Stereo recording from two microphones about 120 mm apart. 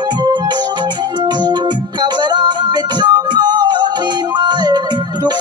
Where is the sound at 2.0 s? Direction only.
40° right (ahead or behind).